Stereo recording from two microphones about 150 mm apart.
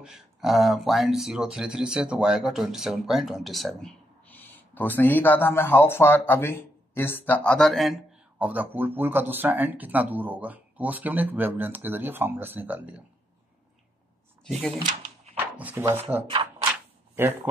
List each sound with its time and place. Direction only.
0.0 s speech: 5° right (ahead or behind)
4.3 s speech: 10° left (ahead or behind)
8.5 s speech: 10° right (ahead or behind)
14.4 s speech: 5° left (ahead or behind)
14.8 s drawer open or close: 55° right (ahead or behind)
15.5 s speech: 10° right (ahead or behind)